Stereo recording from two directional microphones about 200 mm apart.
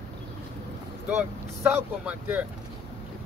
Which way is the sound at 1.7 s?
10° right (ahead or behind).